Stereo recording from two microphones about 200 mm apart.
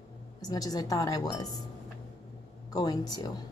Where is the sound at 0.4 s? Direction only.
20° left (ahead or behind).